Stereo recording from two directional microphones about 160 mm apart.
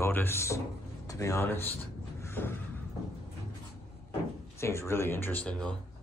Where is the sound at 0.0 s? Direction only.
15° left (ahead or behind).